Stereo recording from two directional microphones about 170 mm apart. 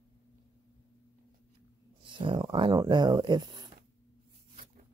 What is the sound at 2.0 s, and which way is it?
Speech, 30° right (ahead or behind).